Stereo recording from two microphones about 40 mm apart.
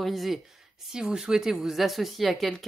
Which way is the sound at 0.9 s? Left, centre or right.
Centre.